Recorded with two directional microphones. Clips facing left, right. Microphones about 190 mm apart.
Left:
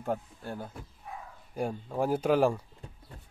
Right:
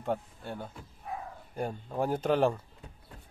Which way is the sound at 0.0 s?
5° left (ahead or behind).